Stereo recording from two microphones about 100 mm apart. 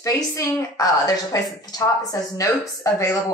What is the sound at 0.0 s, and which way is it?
A woman's voice, 30° left (ahead or behind).